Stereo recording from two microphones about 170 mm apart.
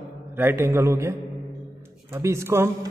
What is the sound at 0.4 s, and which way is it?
Speech, 10° right (ahead or behind).